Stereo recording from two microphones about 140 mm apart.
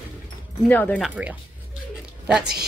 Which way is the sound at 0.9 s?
5° right (ahead or behind).